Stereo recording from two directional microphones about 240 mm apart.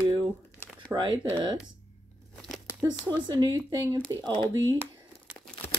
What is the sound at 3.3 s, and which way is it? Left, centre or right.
Speech, centre.